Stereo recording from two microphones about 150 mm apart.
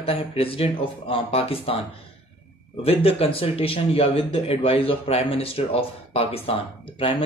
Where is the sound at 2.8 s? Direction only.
40° left (ahead or behind).